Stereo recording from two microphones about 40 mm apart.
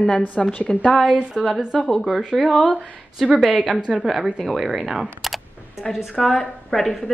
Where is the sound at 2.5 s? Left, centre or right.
Left.